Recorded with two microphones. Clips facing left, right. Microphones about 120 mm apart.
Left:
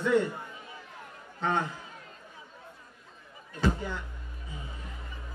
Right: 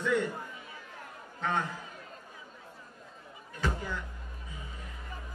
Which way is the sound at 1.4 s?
30° left (ahead or behind).